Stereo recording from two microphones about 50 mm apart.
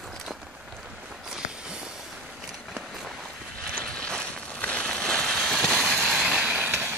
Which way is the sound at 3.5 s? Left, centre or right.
Centre.